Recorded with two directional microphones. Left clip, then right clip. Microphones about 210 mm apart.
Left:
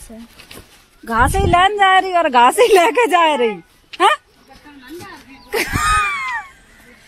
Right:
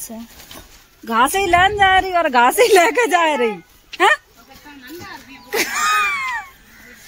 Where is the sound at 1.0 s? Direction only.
Centre (ahead or behind).